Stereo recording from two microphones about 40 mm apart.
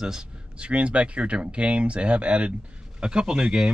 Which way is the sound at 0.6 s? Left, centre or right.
Right.